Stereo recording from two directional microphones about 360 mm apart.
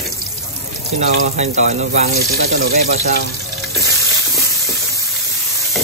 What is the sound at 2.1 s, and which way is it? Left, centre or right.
Speech, right.